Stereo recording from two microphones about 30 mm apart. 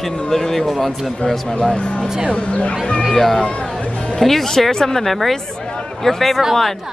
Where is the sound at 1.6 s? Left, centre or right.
Left.